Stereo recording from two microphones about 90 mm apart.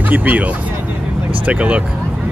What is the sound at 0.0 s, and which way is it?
Speech, 20° right (ahead or behind).